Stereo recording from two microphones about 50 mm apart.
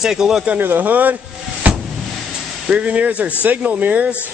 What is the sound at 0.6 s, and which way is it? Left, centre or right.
Speech, right.